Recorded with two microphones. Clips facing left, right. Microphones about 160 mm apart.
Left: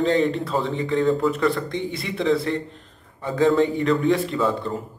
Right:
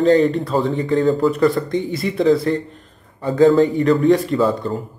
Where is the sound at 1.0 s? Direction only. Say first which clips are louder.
Right 3 dB; centre (ahead or behind).